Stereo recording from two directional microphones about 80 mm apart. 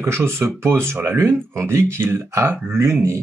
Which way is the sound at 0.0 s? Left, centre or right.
Right.